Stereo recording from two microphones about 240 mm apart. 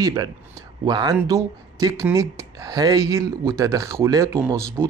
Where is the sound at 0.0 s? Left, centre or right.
Centre.